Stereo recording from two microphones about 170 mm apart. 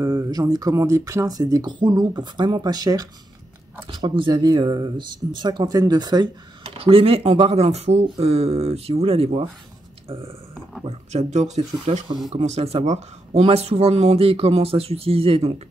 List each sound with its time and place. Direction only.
0.0 s speech: 20° right (ahead or behind)
10.0 s a sound: 35° right (ahead or behind)
10.9 s speech: 40° right (ahead or behind)